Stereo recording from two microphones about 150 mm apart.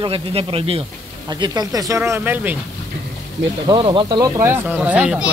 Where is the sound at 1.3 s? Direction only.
25° right (ahead or behind).